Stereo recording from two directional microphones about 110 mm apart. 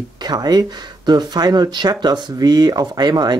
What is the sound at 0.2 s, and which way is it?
Speech, 40° right (ahead or behind).